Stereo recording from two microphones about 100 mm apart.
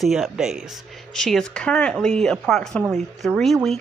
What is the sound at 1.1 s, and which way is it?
Speech, 5° left (ahead or behind).